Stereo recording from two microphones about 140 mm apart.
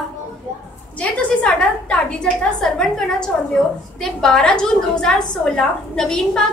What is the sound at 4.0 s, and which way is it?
A woman's voice, 5° left (ahead or behind).